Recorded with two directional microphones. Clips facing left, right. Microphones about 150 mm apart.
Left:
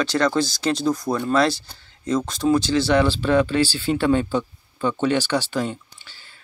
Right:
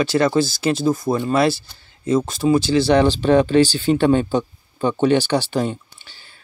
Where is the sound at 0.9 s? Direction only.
25° right (ahead or behind).